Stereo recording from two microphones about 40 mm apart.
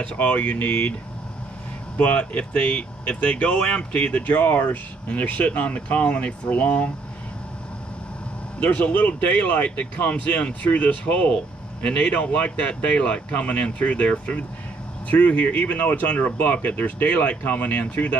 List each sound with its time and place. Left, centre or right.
0.0 s speech: left
2.0 s speech: left
8.5 s speech: left
12.1 s speech: left